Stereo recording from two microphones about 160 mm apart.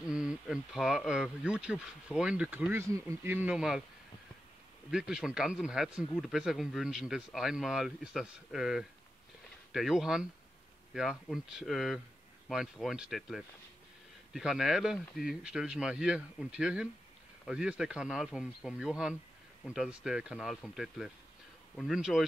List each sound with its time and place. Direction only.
0.1 s speech: 5° right (ahead or behind)
4.9 s speech: 5° right (ahead or behind)